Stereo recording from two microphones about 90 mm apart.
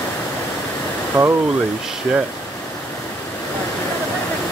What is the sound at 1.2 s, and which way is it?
Speech, 15° right (ahead or behind).